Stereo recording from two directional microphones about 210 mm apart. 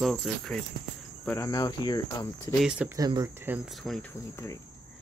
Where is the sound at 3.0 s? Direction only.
20° right (ahead or behind); by 4.1 s centre (ahead or behind).